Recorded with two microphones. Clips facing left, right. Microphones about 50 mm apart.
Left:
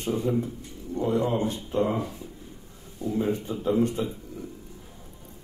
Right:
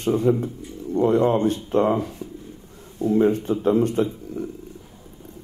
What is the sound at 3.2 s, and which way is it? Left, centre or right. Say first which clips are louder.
A man's voice: right 8 dB; right.